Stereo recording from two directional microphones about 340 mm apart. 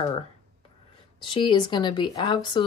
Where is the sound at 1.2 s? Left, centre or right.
Centre.